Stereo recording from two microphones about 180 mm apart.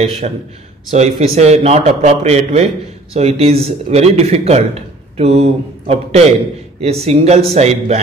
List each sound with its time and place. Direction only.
0.2 s a man's voice: 45° right (ahead or behind)